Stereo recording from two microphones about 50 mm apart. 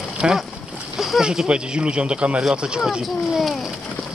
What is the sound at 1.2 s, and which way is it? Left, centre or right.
Speech, centre.